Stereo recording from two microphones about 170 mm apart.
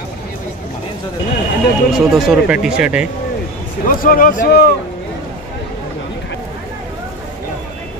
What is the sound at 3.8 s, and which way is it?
Speech, 55° left (ahead or behind).